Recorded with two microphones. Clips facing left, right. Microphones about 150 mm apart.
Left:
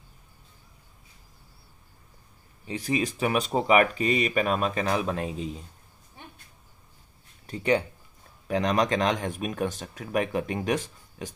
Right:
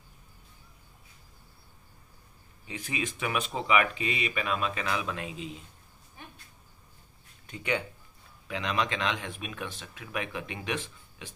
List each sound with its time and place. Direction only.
2.6 s speech: 35° left (ahead or behind)
7.4 s speech: 35° left (ahead or behind)